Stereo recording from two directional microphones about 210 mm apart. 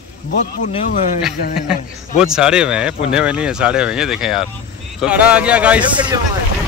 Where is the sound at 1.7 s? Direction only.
5° right (ahead or behind).